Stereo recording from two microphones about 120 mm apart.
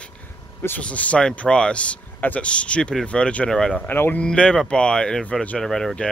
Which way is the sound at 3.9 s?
15° left (ahead or behind).